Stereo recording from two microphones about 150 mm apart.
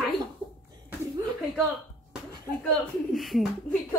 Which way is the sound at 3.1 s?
Centre (ahead or behind).